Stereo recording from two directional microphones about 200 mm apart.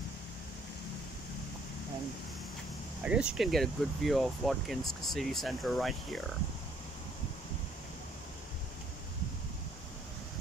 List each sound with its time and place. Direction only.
3.0 s speech: 5° right (ahead or behind)